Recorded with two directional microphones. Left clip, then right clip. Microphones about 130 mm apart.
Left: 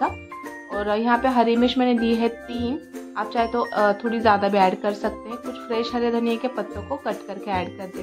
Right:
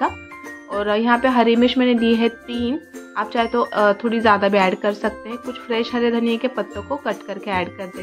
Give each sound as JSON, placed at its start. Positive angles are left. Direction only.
{"t": 0.7, "sound": "speech", "side_deg": -15}